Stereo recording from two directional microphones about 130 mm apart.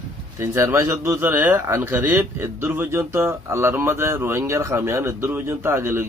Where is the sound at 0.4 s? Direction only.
20° right (ahead or behind).